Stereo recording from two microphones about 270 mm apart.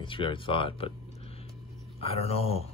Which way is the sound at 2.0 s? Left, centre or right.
Left.